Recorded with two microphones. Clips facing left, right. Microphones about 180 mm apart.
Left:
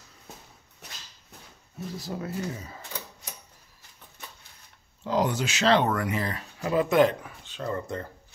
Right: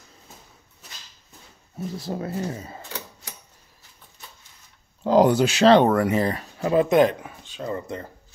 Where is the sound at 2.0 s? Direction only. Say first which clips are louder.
Right 4 dB; 30° right (ahead or behind).